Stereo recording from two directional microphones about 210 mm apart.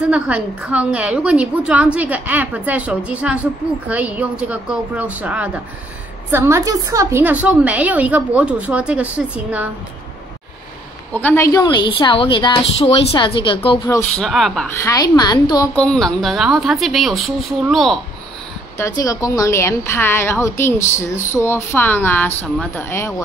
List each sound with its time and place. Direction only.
0.1 s a woman's voice: 5° right (ahead or behind)
11.1 s a woman's voice: 10° left (ahead or behind)
14.1 s a woman's voice: centre (ahead or behind)
14.9 s a woman's voice: 20° left (ahead or behind)
15.7 s a woman's voice: 5° left (ahead or behind)
18.8 s a woman's voice: 15° left (ahead or behind)